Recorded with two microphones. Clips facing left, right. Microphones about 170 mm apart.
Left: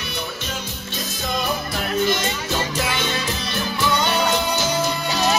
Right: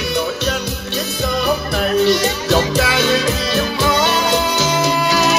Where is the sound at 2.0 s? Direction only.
75° right (ahead or behind).